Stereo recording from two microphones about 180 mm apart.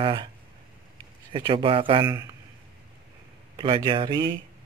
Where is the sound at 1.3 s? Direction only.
25° right (ahead or behind).